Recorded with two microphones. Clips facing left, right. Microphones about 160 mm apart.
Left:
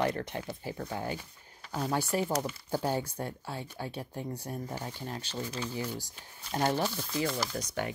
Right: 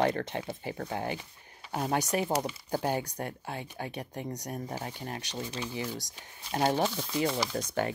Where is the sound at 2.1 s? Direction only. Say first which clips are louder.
Left 1 dB; 80° right.